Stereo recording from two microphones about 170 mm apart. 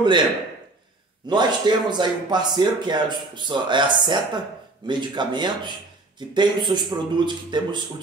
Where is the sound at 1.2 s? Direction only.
25° right (ahead or behind).